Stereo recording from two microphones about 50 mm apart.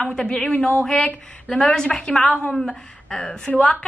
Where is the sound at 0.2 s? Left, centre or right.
Left.